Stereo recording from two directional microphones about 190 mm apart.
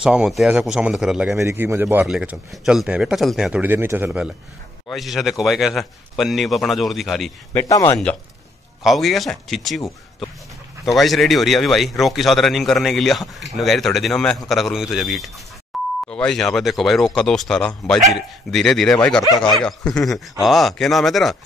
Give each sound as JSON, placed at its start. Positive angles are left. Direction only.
{"t": 0.0, "sound": "a man's voice", "side_deg": -5}
{"t": 1.4, "sound": "a man's voice", "side_deg": -15}
{"t": 7.5, "sound": "speech", "side_deg": 15}
{"t": 8.8, "sound": "a man's voice", "side_deg": 0}
{"t": 11.0, "sound": "a man's voice", "side_deg": 0}
{"t": 15.7, "sound": "beep", "side_deg": 0}
{"t": 16.1, "sound": "a man's voice", "side_deg": 5}